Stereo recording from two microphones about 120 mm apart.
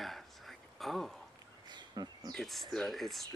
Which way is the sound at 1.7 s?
35° right (ahead or behind).